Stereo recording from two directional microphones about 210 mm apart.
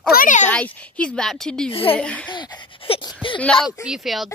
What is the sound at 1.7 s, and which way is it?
Speech, 25° left (ahead or behind).